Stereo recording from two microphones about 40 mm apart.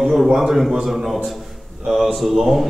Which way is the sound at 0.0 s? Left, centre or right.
Centre.